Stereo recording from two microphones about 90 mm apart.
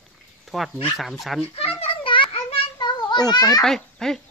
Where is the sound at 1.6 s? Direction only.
90° left; by 3.6 s 45° left (ahead or behind).